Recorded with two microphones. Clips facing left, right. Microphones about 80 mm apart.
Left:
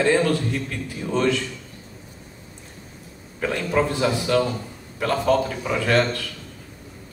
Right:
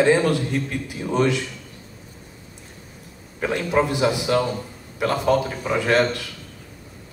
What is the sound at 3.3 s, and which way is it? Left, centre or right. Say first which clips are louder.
A man's voice: right 1 dB; centre.